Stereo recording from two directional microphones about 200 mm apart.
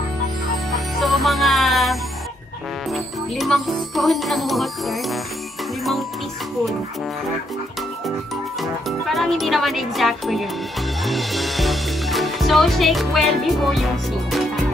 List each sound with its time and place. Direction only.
0.7 s music: centre (ahead or behind)
2.9 s speech: centre (ahead or behind)
8.5 s speech: centre (ahead or behind)